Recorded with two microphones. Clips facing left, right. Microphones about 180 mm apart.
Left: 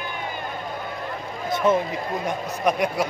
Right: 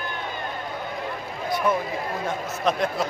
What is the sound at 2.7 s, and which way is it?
Speech, 15° left (ahead or behind).